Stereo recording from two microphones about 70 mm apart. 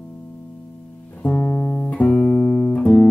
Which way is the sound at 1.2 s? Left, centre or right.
Centre.